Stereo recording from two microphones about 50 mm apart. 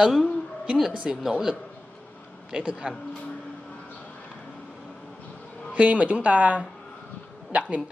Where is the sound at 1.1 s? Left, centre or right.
Centre.